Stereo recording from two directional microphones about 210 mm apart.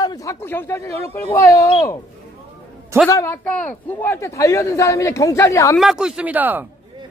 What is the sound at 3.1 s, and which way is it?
Speech, 15° left (ahead or behind).